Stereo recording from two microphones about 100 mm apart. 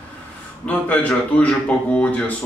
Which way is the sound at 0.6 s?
15° left (ahead or behind).